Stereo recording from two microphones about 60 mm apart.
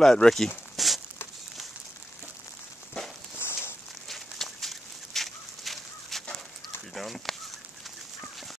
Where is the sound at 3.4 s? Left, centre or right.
Left.